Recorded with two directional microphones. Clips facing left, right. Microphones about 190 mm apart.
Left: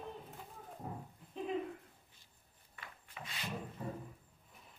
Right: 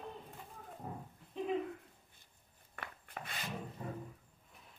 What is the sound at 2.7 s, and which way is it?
Wood, 55° right (ahead or behind).